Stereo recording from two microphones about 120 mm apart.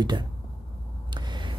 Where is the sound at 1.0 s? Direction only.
40° right (ahead or behind).